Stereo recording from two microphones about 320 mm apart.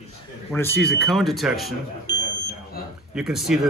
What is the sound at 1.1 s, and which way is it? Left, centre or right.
Speech, centre.